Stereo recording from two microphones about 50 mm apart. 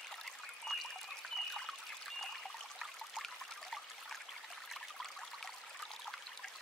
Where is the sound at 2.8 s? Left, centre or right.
Centre.